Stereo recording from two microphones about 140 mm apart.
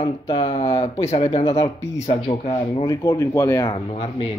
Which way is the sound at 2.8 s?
25° left (ahead or behind).